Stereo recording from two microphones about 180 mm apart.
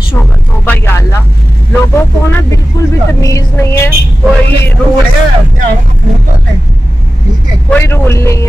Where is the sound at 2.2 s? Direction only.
15° left (ahead or behind).